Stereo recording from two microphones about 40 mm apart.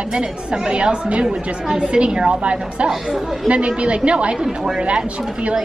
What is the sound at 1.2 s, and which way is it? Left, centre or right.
A woman's voice, centre.